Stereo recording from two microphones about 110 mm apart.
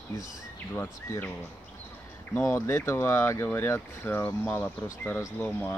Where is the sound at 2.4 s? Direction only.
25° left (ahead or behind).